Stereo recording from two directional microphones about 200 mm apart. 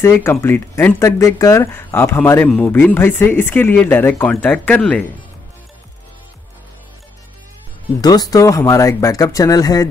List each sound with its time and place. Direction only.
0.0 s speech: 10° left (ahead or behind)
8.0 s speech: 20° left (ahead or behind)